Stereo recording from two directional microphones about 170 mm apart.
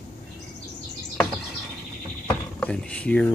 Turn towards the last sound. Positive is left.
turn(degrees=5)  # may be behind; listen again after turning